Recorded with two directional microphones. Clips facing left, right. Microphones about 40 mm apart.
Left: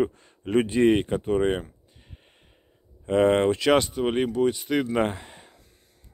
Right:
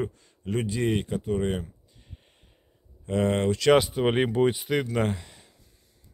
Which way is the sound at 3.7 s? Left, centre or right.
Centre.